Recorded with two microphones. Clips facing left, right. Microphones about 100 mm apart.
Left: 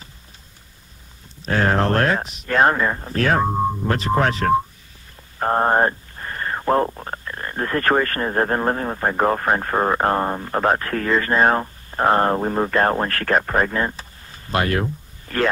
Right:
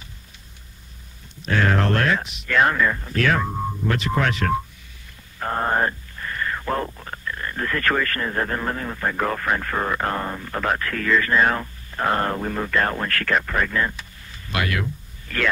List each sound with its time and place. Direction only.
1.4 s speech: 35° left (ahead or behind)